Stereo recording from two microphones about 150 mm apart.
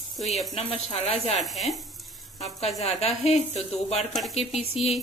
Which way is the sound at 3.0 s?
45° left (ahead or behind).